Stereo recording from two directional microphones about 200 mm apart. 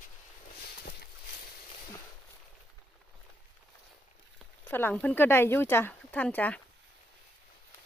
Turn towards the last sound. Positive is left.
turn(degrees=5)  # may be behind; listen again after turning